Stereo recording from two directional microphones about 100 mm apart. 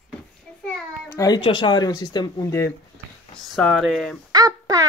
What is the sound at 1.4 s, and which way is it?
Speech, 50° left (ahead or behind).